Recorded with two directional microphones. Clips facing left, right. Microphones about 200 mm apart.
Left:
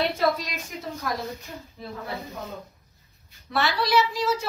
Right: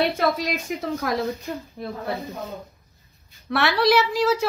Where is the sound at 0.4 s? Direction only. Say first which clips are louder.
Right 9 dB; 65° right (ahead or behind).